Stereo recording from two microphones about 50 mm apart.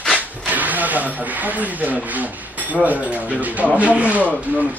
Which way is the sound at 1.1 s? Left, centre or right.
Right.